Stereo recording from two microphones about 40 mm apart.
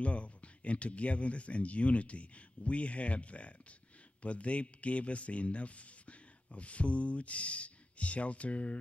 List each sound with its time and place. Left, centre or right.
0.0 s speech: left